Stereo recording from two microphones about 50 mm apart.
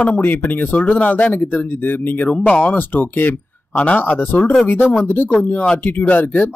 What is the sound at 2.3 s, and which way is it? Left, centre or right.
Speech, left.